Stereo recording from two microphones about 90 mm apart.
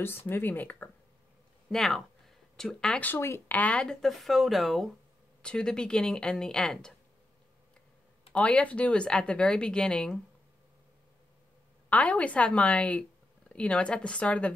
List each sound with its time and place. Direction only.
0.3 s speech: 20° left (ahead or behind)
1.7 s speech: 5° left (ahead or behind)
3.0 s a woman's voice: 25° left (ahead or behind); by 6.9 s 5° left (ahead or behind)
8.3 s a woman's voice: 10° left (ahead or behind)
11.9 s a woman's voice: 15° left (ahead or behind)